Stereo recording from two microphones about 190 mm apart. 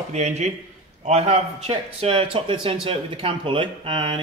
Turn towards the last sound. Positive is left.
turn(degrees=-25)  # may be behind; listen again after turning